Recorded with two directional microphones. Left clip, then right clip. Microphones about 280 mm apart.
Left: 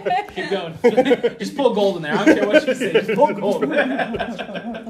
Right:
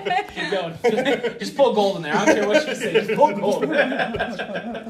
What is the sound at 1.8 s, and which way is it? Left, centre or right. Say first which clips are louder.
Speech: left 1 dB; left.